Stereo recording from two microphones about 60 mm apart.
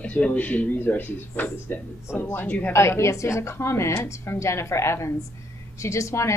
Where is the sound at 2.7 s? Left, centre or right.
Left.